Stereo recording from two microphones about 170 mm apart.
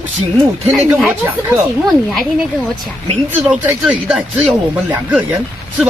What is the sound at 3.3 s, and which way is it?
Speech, 10° right (ahead or behind).